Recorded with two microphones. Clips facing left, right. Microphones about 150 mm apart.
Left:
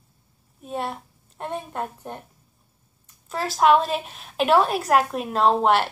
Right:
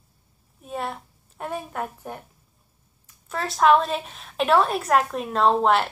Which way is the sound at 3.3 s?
Centre (ahead or behind).